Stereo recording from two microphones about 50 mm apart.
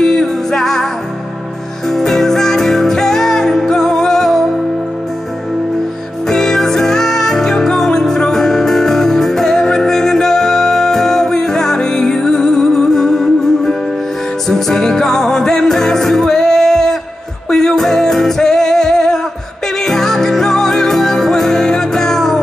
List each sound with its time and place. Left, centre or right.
0.0 s music: centre
1.9 s music: centre
6.2 s music: centre